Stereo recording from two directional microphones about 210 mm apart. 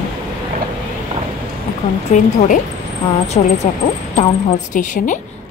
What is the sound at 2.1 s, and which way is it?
Speech, 35° left (ahead or behind).